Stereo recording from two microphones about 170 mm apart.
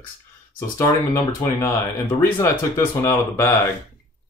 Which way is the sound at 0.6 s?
15° left (ahead or behind).